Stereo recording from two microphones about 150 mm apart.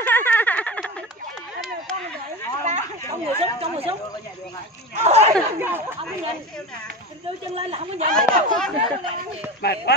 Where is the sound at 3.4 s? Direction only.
40° right (ahead or behind).